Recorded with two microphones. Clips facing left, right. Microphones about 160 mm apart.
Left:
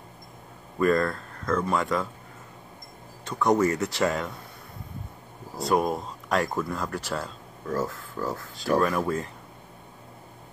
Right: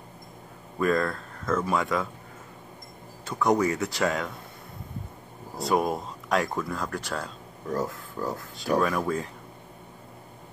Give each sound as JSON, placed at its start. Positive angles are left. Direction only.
{"t": 0.7, "sound": "speech", "side_deg": 0}
{"t": 3.3, "sound": "speech", "side_deg": 0}
{"t": 5.6, "sound": "speech", "side_deg": 0}
{"t": 7.6, "sound": "speech", "side_deg": -20}
{"t": 8.5, "sound": "speech", "side_deg": 0}